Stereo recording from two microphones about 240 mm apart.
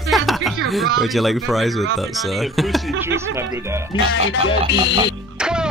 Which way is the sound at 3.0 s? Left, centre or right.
Centre.